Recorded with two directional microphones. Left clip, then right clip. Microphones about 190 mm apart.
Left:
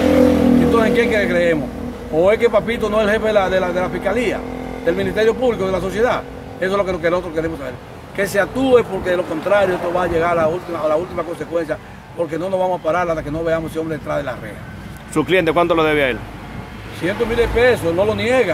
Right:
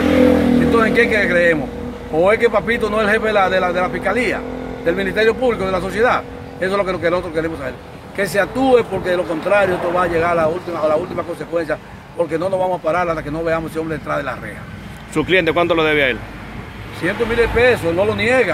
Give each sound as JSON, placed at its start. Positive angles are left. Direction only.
{"t": 0.0, "sound": "vehicle", "side_deg": -40}
{"t": 0.7, "sound": "speech", "side_deg": 0}